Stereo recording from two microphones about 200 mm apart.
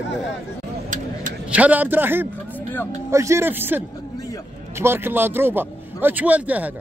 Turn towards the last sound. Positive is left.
turn(degrees=-5)  # may be behind; listen again after turning